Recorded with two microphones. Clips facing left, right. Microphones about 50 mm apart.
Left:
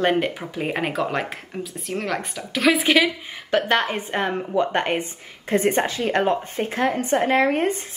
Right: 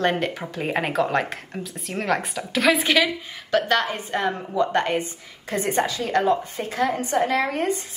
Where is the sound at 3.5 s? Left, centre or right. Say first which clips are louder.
Left 1 dB; left.